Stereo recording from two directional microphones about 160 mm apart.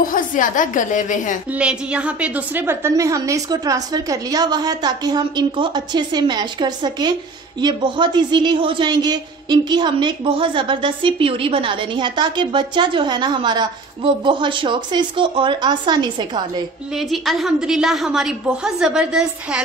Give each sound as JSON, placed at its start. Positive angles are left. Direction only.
{"t": 0.0, "sound": "a woman's voice", "side_deg": 55}
{"t": 1.5, "sound": "a man's voice", "side_deg": -5}
{"t": 16.9, "sound": "a woman's voice", "side_deg": 0}